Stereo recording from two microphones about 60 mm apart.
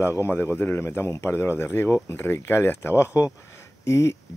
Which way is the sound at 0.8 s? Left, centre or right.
Left.